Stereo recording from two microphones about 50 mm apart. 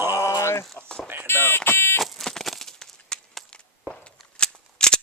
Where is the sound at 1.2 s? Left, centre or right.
Left.